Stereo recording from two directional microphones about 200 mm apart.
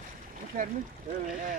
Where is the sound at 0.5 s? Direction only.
45° right (ahead or behind).